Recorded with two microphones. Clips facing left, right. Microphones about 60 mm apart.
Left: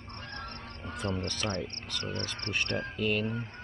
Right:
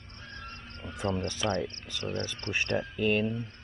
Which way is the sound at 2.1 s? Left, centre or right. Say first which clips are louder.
Right 2 dB; left.